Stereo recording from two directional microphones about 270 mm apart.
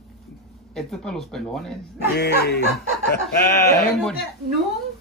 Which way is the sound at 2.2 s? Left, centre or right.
Left.